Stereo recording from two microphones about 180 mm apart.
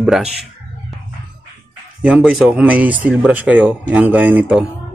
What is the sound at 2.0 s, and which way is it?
Speech, 5° right (ahead or behind).